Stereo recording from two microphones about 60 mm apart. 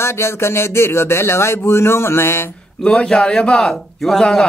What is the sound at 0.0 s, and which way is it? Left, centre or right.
Speech, left.